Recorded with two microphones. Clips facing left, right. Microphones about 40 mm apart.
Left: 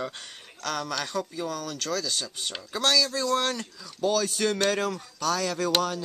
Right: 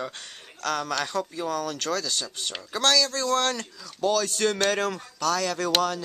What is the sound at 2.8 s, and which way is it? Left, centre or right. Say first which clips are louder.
Speech: right 1 dB; centre.